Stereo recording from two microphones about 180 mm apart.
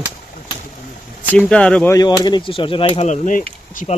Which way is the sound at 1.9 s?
20° left (ahead or behind).